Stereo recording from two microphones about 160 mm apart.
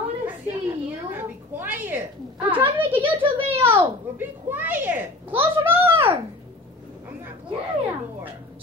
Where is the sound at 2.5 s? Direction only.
35° right (ahead or behind).